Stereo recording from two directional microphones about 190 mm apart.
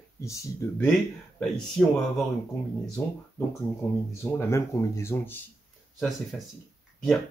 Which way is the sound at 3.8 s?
5° left (ahead or behind).